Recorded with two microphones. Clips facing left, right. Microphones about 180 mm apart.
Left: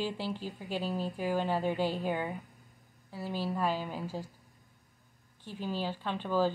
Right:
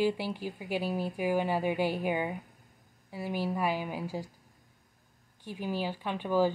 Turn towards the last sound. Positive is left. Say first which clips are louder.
# right 2 dB
turn(degrees=-15)  # may be behind; listen again after turning